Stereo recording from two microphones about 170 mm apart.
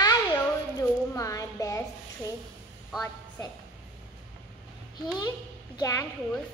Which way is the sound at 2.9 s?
Centre (ahead or behind).